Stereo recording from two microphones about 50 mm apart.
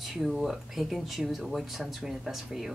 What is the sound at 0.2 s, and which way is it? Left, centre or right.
Speech, centre.